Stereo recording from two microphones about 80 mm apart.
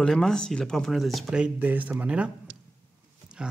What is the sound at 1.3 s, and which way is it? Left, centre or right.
Speech, centre.